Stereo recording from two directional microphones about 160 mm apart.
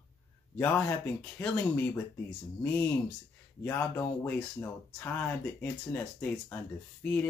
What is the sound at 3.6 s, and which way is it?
Speech, 10° left (ahead or behind).